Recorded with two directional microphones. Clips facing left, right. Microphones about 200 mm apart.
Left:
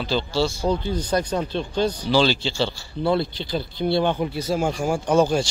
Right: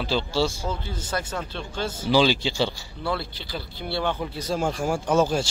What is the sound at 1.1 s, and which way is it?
Speech, 20° left (ahead or behind).